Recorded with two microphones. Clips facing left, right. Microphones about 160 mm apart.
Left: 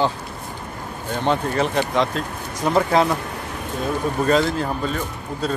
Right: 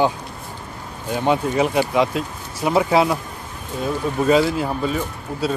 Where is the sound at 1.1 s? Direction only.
10° right (ahead or behind).